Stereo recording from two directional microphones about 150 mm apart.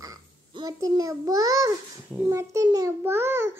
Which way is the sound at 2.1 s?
15° right (ahead or behind).